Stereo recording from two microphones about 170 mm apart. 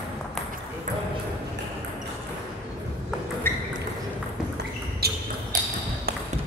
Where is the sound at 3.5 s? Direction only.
15° left (ahead or behind).